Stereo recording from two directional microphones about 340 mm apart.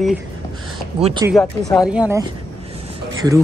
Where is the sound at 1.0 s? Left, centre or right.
Centre.